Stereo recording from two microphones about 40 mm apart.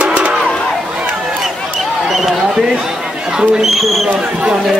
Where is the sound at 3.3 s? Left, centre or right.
Centre.